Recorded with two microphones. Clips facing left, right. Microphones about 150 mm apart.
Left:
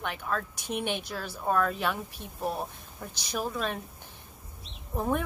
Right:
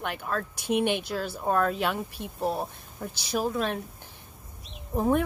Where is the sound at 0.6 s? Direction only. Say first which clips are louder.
Right 7 dB; 60° right (ahead or behind).